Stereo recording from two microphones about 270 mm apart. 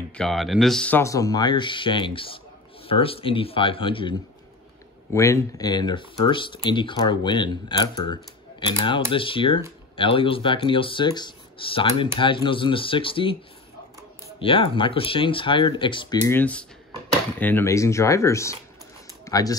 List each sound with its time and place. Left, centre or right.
0.1 s speech: centre
5.1 s speech: centre
14.4 s speech: centre
19.2 s a sound: centre